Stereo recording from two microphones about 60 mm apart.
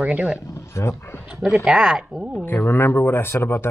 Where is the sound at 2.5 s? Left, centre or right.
Left.